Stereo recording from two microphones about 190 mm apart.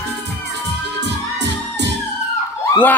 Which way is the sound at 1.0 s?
65° right (ahead or behind).